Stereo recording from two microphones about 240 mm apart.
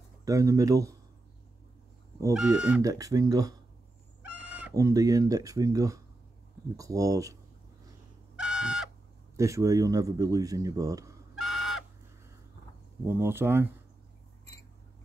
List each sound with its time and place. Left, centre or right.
0.2 s speech: centre
2.1 s speech: centre
8.4 s a sound: centre
9.4 s speech: centre
11.3 s fowl: centre
13.0 s speech: centre